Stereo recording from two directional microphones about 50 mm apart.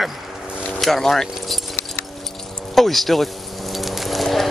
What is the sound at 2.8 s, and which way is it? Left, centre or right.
Speech, centre.